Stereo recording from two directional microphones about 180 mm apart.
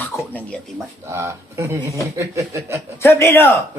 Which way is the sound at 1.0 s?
15° right (ahead or behind).